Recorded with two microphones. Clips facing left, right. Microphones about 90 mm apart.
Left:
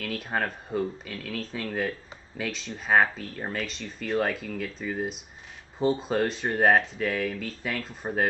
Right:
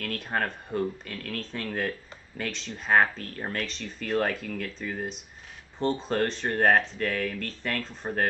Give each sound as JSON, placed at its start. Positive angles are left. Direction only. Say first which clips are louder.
{"t": 0.0, "sound": "speech", "louder": "even", "side_deg": 5}